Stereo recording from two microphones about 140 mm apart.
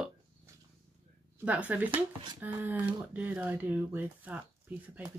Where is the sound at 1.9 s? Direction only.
35° right (ahead or behind).